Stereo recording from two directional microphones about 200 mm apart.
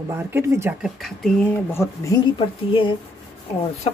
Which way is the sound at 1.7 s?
15° left (ahead or behind).